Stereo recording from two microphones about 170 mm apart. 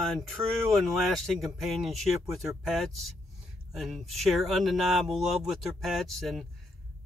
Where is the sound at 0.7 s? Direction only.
Centre (ahead or behind).